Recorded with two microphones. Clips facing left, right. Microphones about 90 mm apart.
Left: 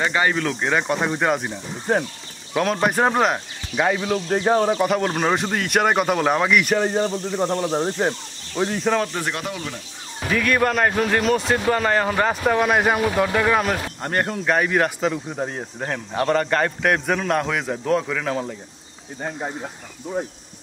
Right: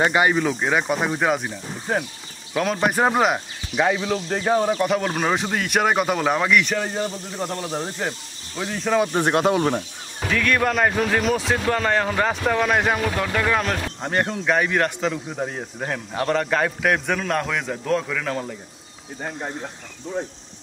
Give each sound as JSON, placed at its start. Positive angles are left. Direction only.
{"t": 0.1, "sound": "a man's voice", "side_deg": -15}
{"t": 6.8, "sound": "speech", "side_deg": 25}
{"t": 8.7, "sound": "a man's voice", "side_deg": 0}
{"t": 9.3, "sound": "speech", "side_deg": -45}
{"t": 10.2, "sound": "a man's voice", "side_deg": 5}